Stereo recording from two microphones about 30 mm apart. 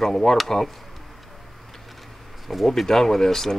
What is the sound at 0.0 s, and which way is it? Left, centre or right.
Speech, centre.